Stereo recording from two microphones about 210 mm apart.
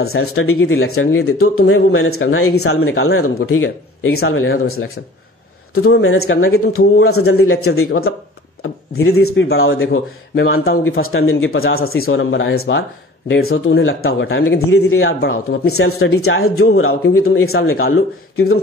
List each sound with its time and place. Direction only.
0.0 s speech: 85° left
5.9 s speech: 70° left (ahead or behind)
7.0 s a man's voice: 90° left
9.6 s a man's voice: 75° left (ahead or behind)
13.3 s a man's voice: 75° left (ahead or behind)